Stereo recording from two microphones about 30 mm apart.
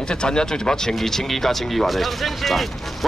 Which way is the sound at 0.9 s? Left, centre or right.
Centre.